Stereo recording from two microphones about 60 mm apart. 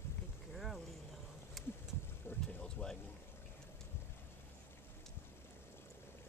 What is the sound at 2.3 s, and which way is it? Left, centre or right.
Boat, left.